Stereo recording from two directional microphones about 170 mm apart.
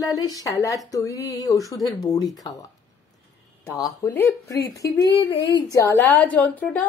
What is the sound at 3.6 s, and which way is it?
Speech, 15° left (ahead or behind).